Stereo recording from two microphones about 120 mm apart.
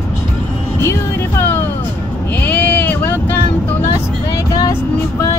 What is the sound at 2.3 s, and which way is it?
Vehicle, 10° left (ahead or behind).